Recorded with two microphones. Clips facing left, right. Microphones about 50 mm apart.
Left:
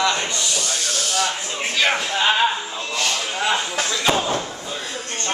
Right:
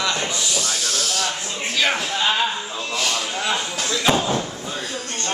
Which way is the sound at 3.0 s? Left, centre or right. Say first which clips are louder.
Left 1 dB; centre.